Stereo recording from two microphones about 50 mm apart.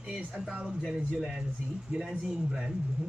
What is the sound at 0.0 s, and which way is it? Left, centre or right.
Speech, centre.